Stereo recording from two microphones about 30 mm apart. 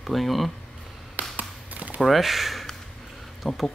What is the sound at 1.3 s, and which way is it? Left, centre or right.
Tap, right.